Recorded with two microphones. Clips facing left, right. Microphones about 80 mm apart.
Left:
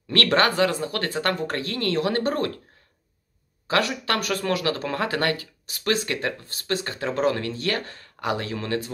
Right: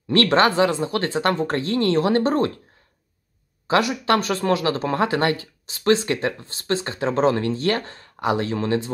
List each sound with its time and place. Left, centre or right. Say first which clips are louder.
0.1 s speech: right 4 dB; right
3.6 s speech: right 4 dB; centre